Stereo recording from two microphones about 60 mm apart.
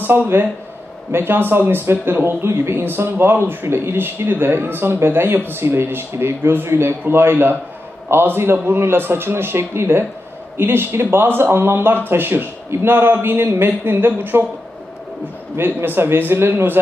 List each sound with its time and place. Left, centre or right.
0.0 s speech: right
15.5 s speech: right